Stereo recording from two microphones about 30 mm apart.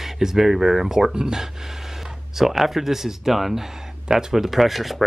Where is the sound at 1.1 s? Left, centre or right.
Right.